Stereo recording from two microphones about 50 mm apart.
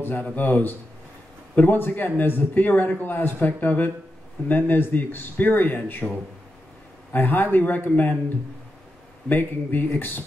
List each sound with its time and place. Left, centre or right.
0.0 s speech: left
7.1 s speech: left
9.3 s speech: left